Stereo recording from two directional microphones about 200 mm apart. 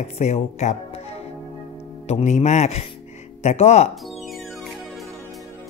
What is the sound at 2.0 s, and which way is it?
Speech, 35° left (ahead or behind).